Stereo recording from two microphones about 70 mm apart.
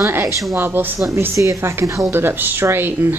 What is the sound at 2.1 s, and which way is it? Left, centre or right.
A woman's voice, right.